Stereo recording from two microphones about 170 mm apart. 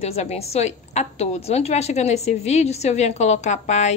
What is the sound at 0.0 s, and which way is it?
A woman's voice, 40° left (ahead or behind).